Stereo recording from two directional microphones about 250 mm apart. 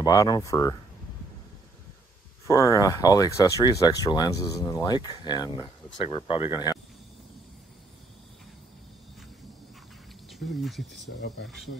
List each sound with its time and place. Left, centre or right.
0.0 s speech: centre
2.4 s speech: centre
10.4 s speech: centre
11.1 s speech: left